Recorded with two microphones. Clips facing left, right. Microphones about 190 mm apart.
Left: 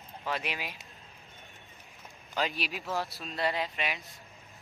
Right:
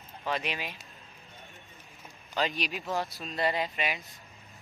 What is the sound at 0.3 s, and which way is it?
Speech, 5° left (ahead or behind).